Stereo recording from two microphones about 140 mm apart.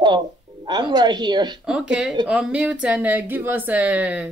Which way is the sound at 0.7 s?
30° right (ahead or behind).